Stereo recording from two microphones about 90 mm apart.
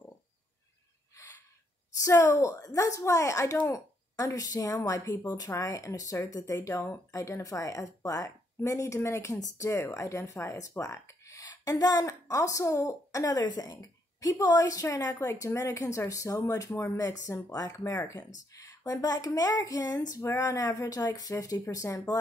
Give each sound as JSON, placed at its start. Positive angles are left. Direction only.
{"t": 1.1, "sound": "gasp", "side_deg": 35}
{"t": 2.0, "sound": "speech", "side_deg": 35}
{"t": 13.4, "sound": "speech", "side_deg": 50}